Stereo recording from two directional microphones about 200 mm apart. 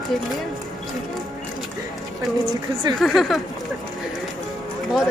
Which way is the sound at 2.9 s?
Centre (ahead or behind).